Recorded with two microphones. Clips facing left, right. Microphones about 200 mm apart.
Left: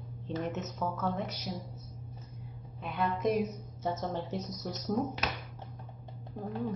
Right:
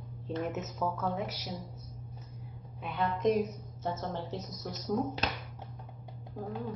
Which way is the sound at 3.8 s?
15° left (ahead or behind).